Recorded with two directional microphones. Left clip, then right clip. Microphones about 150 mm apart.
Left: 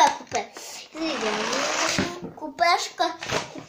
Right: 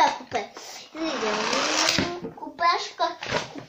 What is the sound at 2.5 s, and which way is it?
Speech, 90° left.